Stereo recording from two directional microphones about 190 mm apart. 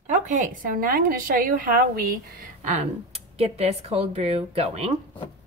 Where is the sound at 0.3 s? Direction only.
45° right (ahead or behind).